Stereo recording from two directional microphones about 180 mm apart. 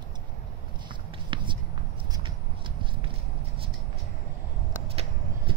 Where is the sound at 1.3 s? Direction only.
25° right (ahead or behind).